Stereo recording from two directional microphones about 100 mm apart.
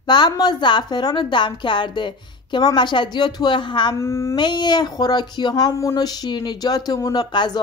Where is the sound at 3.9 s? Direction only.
30° left (ahead or behind).